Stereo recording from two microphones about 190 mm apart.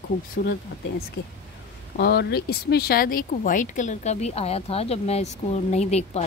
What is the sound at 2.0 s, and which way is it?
Speech, 60° left (ahead or behind).